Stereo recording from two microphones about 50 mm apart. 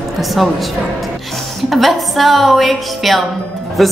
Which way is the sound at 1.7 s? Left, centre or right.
Centre.